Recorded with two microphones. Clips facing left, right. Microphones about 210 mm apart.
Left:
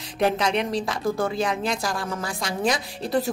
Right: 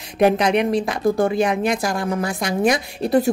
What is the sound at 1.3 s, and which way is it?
Speech, 15° right (ahead or behind).